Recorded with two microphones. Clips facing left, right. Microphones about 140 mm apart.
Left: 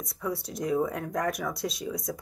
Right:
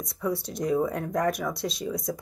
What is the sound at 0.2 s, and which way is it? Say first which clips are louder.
Speech: right 3 dB; 5° left (ahead or behind).